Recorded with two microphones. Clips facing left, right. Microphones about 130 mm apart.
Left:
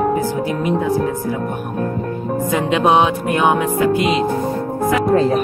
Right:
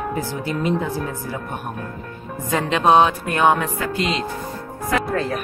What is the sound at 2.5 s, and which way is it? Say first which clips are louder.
Speech: even; 15° left (ahead or behind).